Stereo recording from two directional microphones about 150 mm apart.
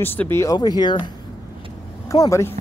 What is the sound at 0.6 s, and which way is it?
Speech, 30° left (ahead or behind).